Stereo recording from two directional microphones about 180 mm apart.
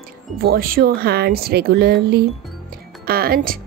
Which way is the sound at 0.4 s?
55° right (ahead or behind).